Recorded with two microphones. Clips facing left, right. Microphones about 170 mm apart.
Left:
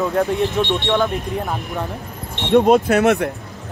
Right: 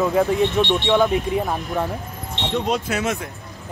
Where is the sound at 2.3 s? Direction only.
55° left (ahead or behind).